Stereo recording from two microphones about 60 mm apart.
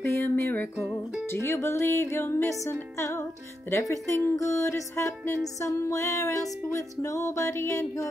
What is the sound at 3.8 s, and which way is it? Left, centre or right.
Music, left.